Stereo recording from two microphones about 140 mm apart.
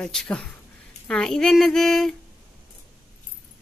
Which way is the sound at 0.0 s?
5° left (ahead or behind).